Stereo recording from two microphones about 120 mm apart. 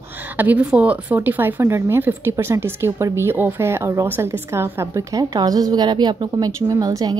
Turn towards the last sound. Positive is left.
turn(degrees=-30)  # may be behind; listen again after turning